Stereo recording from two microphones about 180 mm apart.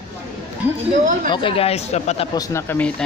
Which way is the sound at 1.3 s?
30° left (ahead or behind).